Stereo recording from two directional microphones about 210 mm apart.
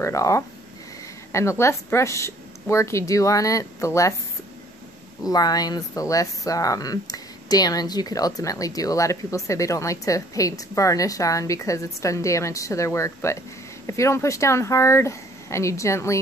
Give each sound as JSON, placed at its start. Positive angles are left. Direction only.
{"t": 0.0, "sound": "speech", "side_deg": 15}
{"t": 5.2, "sound": "speech", "side_deg": 20}